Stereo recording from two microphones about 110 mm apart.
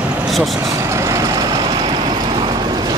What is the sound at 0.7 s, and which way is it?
Vehicle, 25° right (ahead or behind).